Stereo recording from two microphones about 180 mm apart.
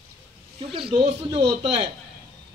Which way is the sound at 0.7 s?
30° right (ahead or behind).